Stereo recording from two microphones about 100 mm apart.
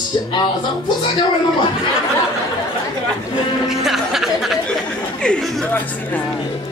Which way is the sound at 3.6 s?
5° right (ahead or behind).